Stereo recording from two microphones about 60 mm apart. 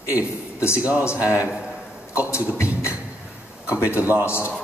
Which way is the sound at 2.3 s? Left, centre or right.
Left.